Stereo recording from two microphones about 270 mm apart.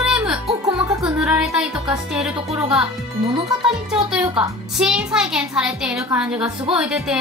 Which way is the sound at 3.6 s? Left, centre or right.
Centre.